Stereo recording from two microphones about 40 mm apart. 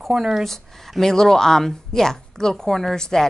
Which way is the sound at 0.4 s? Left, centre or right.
Centre.